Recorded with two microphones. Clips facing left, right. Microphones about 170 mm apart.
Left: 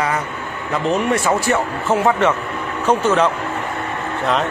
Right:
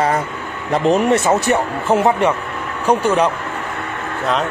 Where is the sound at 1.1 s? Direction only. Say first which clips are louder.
Right 2 dB; 20° right (ahead or behind).